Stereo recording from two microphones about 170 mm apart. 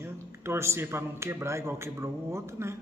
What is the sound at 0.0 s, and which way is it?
A man's voice, 15° right (ahead or behind).